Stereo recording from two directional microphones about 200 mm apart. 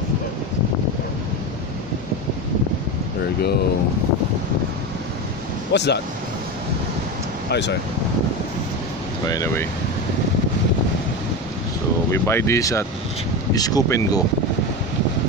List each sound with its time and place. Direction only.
5.7 s speech: 55° left (ahead or behind)
7.4 s speech: 60° left (ahead or behind)
9.3 s speech: 15° left (ahead or behind)
12.1 s speech: 15° left (ahead or behind)